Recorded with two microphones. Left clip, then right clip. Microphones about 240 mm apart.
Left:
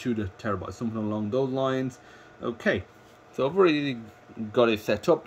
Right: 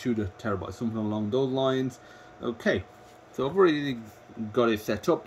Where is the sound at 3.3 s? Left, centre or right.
Centre.